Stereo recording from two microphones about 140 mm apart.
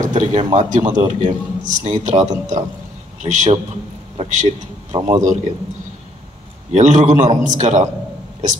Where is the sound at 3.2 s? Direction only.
60° right (ahead or behind).